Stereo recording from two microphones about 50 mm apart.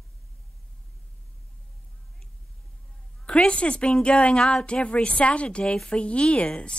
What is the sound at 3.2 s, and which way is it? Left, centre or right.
A woman's voice, centre.